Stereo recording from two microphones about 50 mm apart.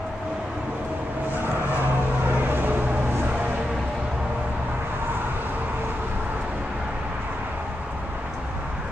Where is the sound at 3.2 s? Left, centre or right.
Right.